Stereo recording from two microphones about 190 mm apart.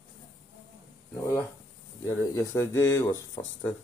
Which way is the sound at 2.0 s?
15° left (ahead or behind).